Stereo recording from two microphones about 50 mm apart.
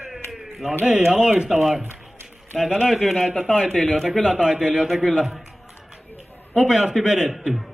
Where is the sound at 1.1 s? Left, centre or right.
Centre.